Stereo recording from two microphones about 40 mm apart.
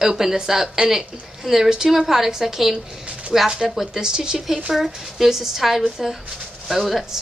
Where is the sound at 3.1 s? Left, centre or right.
Right.